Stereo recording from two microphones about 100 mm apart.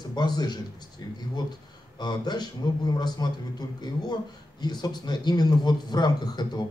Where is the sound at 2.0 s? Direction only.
45° left (ahead or behind).